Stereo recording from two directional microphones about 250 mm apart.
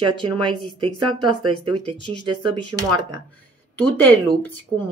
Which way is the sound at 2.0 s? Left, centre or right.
Centre.